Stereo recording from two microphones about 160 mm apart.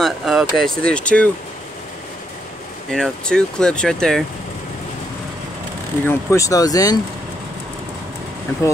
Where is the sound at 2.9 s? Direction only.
5° left (ahead or behind).